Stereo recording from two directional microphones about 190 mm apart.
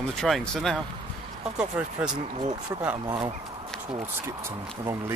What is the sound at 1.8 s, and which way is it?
Speech, 5° right (ahead or behind).